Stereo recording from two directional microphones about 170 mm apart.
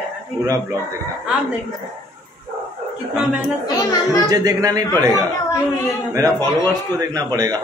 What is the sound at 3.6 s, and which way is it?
Speech, 20° left (ahead or behind).